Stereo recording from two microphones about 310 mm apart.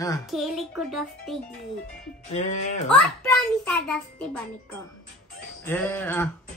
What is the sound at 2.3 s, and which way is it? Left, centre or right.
Music, left.